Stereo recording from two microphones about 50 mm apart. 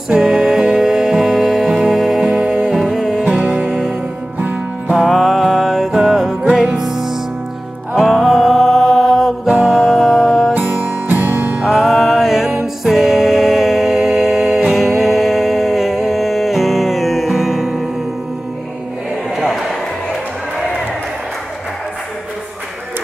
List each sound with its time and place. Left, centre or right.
0.2 s music: centre
3.3 s music: right
4.4 s music: right
4.9 s music: centre
9.5 s music: centre
10.5 s music: right
11.6 s music: centre
11.9 s music: centre
19.3 s a sound: centre